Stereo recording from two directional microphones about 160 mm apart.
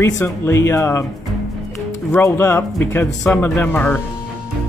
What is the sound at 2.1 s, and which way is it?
Speech, 15° left (ahead or behind).